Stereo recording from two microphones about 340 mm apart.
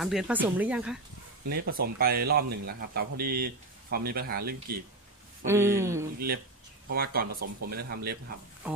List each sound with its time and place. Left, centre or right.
0.0 s speech: centre
1.5 s speech: right
5.5 s speech: centre
6.1 s speech: right